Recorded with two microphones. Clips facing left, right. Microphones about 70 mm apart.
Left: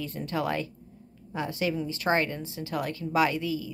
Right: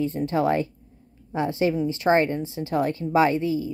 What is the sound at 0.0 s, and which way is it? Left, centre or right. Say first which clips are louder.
A woman's voice: right 8 dB; right.